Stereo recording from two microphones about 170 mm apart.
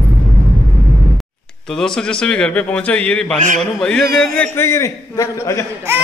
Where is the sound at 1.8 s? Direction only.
5° left (ahead or behind).